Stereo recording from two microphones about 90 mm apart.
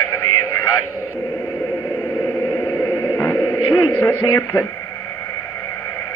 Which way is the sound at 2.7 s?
35° left (ahead or behind).